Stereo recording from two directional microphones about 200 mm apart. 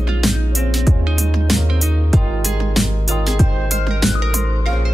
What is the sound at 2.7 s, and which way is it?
Music, centre (ahead or behind).